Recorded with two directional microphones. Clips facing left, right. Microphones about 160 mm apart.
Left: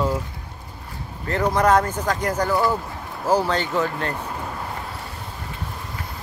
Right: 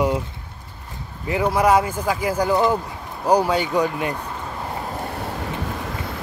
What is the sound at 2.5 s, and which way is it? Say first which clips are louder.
Speech: right 2 dB; 20° right (ahead or behind).